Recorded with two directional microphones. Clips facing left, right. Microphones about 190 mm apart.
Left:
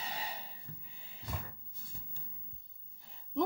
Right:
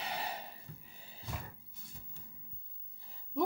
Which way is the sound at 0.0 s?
60° right (ahead or behind).